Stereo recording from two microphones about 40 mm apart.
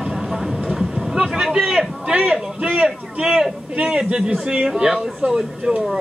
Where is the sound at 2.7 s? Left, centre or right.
Centre.